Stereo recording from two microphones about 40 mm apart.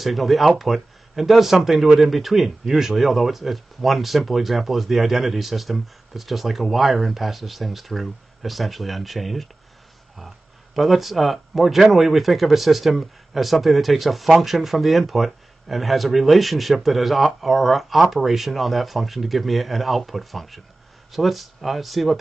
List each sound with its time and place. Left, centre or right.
0.0 s speech: centre